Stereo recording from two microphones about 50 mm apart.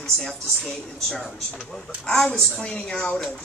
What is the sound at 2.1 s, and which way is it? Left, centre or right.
A woman's voice, centre.